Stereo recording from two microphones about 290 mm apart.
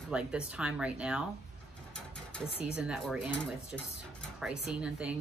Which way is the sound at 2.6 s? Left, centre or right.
Centre.